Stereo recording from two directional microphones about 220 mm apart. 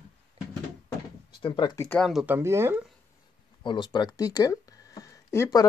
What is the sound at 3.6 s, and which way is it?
Speech, 20° left (ahead or behind).